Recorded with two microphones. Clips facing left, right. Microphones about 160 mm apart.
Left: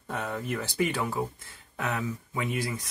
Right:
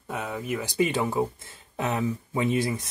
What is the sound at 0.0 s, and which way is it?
Speech, 5° right (ahead or behind).